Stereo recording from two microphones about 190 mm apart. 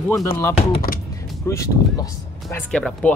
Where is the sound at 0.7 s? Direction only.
50° left (ahead or behind).